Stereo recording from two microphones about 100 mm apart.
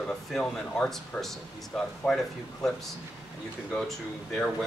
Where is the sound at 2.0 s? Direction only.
15° left (ahead or behind).